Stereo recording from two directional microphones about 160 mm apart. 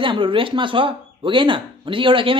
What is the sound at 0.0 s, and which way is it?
Speech, 30° right (ahead or behind).